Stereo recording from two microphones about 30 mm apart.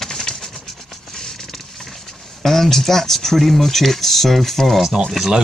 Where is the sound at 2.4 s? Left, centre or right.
Centre.